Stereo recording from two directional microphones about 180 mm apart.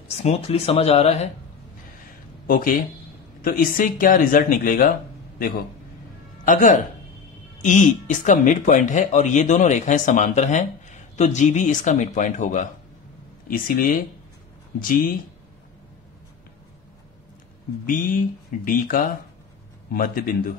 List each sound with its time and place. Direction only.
0.2 s speech: 35° left (ahead or behind)
2.4 s speech: 50° left (ahead or behind)
6.4 s speech: 45° left (ahead or behind)
14.8 s speech: 50° left (ahead or behind)
17.8 s speech: 50° left (ahead or behind)